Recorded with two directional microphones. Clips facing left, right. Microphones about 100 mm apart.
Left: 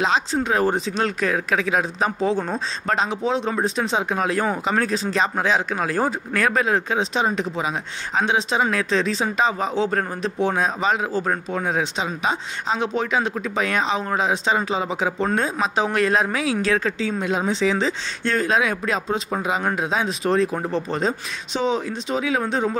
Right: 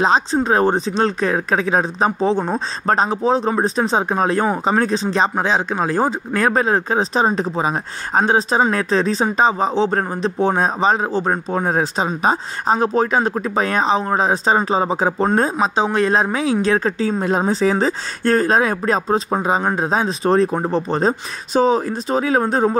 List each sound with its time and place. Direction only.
0.0 s speech: 35° right (ahead or behind)